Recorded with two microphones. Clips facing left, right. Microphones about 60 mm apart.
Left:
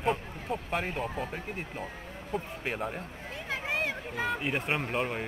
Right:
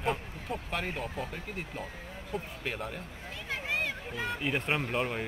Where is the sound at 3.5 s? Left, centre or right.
Left.